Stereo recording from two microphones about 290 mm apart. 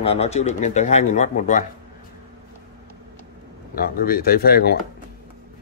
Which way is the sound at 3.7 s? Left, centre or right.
Left.